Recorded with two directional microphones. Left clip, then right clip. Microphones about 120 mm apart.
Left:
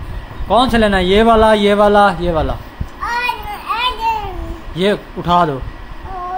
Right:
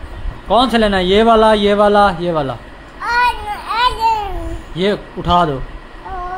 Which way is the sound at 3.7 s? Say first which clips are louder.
Right 3 dB; 90° right.